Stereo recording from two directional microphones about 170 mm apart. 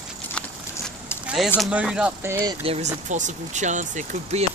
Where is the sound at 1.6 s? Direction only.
5° right (ahead or behind).